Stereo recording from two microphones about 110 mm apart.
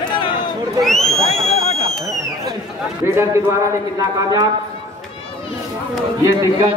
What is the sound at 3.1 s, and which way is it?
A man's voice, 25° right (ahead or behind).